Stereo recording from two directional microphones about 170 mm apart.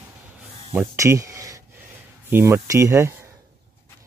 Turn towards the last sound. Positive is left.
turn(degrees=-15)  # may be behind; listen again after turning